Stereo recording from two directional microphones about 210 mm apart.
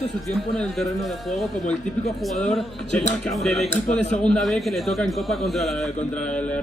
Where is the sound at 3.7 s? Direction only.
35° left (ahead or behind).